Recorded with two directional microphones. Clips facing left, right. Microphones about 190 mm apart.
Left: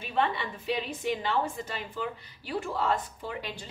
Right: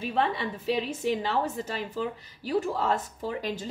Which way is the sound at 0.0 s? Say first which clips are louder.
Right 2 dB; 35° right (ahead or behind).